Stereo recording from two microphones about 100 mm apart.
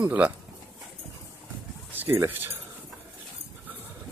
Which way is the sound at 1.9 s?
20° right (ahead or behind).